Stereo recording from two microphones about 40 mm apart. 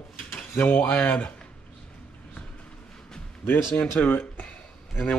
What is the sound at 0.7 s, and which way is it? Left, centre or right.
Speech, left.